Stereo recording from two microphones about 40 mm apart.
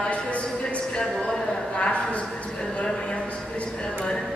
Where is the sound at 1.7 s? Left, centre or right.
Left.